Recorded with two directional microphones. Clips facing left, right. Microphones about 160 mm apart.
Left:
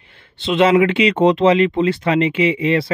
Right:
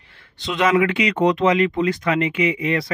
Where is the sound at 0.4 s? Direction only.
25° left (ahead or behind).